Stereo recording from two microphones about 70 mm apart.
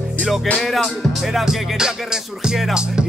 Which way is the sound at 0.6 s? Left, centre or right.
Centre.